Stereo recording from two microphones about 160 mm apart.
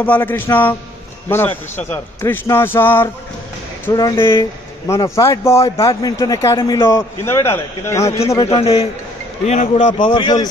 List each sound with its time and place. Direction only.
0.0 s speech: 10° left (ahead or behind)
8.4 s a man's voice: 40° left (ahead or behind)
9.5 s speech: 50° left (ahead or behind)
10.1 s speech: 25° left (ahead or behind)